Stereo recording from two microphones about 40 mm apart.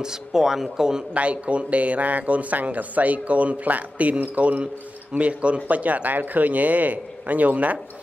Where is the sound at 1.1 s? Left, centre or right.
Right.